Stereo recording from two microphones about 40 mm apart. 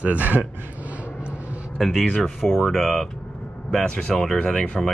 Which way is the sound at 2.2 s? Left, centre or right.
Centre.